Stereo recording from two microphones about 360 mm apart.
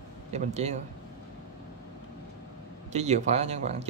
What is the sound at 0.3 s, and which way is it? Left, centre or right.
Speech, centre.